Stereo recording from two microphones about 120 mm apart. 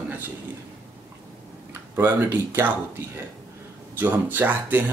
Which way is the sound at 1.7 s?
20° right (ahead or behind).